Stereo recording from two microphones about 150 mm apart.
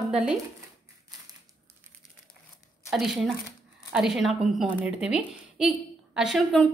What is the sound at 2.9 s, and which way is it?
A woman's voice, centre (ahead or behind).